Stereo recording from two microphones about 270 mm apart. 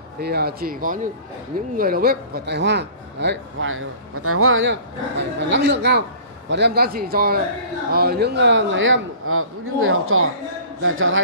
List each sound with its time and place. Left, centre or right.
0.2 s a man's voice: right